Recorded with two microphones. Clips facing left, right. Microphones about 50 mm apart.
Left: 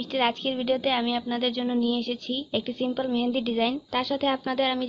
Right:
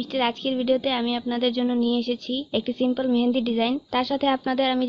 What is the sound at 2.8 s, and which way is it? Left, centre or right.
A woman's voice, centre.